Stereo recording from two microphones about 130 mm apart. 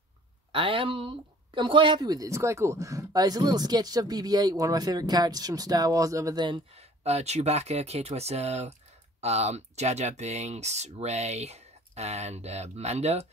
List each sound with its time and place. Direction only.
0.5 s speech: 40° right (ahead or behind)
7.0 s speech: 55° right (ahead or behind)